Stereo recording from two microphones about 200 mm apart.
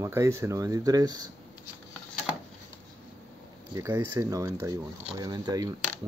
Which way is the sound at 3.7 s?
15° right (ahead or behind).